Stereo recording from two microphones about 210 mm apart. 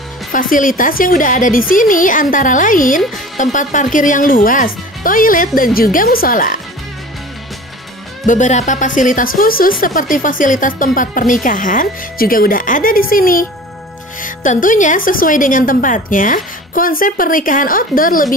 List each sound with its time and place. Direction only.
0.3 s speech: 40° left (ahead or behind)
8.3 s speech: 35° left (ahead or behind)